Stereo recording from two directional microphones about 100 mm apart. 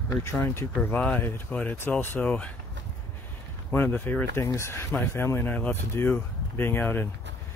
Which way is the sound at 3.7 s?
20° left (ahead or behind).